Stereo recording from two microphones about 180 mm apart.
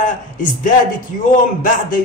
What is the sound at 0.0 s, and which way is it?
Speech, 45° left (ahead or behind).